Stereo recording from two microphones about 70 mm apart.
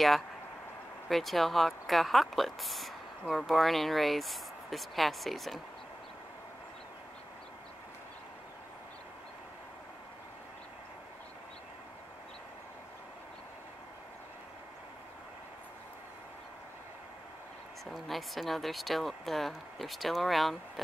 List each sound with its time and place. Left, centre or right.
1.0 s speech: centre
17.9 s speech: centre